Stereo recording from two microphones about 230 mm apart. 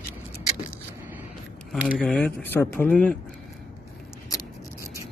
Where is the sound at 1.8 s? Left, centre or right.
Centre.